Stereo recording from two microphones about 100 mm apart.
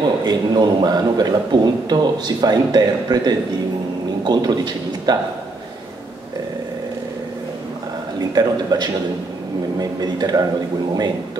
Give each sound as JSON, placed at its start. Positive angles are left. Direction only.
{"t": 0.2, "sound": "a man's voice", "side_deg": -45}
{"t": 8.2, "sound": "a man's voice", "side_deg": -45}